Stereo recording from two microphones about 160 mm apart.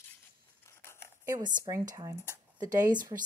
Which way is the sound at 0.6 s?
15° left (ahead or behind).